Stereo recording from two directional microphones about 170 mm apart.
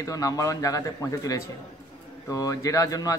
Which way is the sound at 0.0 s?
20° left (ahead or behind).